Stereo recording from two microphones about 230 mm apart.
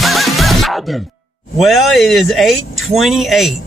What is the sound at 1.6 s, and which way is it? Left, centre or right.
Speech, centre.